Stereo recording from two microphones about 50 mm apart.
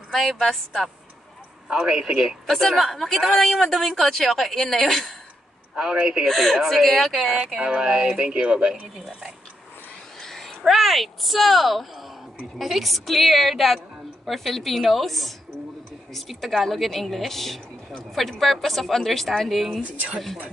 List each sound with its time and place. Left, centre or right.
0.1 s speech: centre
1.7 s speech: centre
2.4 s a woman's voice: centre
5.8 s a man's voice: centre
6.2 s a woman's voice: centre
7.6 s speech: centre
10.2 s a sound: centre
10.6 s a woman's voice: centre